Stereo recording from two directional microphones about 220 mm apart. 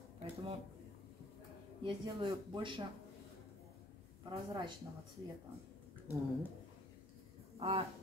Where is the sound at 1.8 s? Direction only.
20° right (ahead or behind).